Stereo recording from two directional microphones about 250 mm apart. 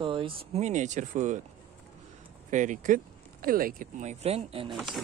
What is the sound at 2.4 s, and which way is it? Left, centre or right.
Speech, right.